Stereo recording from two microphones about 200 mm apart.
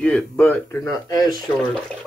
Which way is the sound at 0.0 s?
5° left (ahead or behind).